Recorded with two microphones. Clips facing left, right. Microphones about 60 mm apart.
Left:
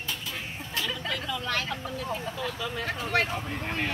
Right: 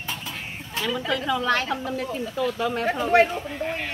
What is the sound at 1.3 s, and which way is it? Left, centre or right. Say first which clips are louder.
Speech: right 9 dB; right.